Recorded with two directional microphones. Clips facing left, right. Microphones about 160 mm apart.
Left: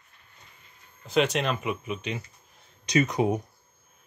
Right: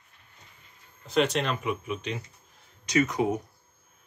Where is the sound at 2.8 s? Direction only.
20° left (ahead or behind).